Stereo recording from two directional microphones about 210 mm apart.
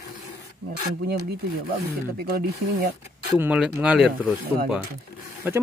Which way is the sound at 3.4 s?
5° right (ahead or behind).